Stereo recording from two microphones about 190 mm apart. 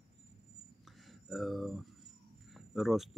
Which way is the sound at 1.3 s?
Centre (ahead or behind).